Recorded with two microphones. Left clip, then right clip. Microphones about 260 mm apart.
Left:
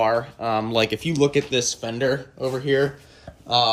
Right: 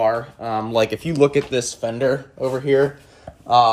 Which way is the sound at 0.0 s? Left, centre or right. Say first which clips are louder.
Right 1 dB; centre.